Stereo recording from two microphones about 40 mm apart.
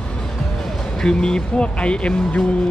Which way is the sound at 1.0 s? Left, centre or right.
Centre.